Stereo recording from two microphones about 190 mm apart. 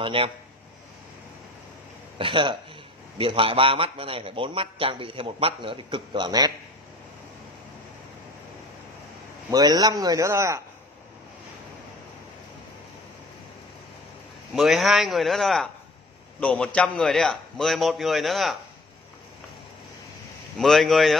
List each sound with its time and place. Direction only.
0.0 s a man's voice: 25° right (ahead or behind)
2.1 s a man's voice: 25° right (ahead or behind)
9.5 s a man's voice: 20° right (ahead or behind)
14.5 s a man's voice: centre (ahead or behind)
20.5 s a man's voice: centre (ahead or behind)